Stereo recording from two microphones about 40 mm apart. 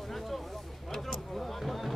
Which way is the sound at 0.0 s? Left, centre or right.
Centre.